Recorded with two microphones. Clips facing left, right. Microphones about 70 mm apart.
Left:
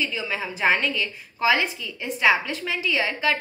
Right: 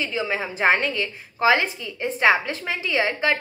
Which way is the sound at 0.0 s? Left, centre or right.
Right.